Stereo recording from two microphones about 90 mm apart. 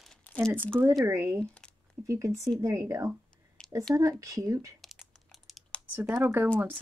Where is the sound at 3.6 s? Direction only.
10° left (ahead or behind).